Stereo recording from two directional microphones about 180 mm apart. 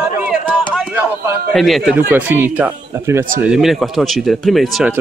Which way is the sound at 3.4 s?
5° right (ahead or behind).